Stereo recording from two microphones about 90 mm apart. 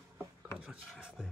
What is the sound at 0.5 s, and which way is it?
Rub, 10° right (ahead or behind).